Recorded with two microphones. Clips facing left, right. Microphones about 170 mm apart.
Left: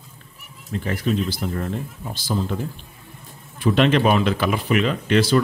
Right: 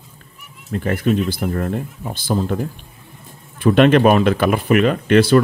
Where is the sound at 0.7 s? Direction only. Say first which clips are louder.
Right 5 dB; 55° right (ahead or behind).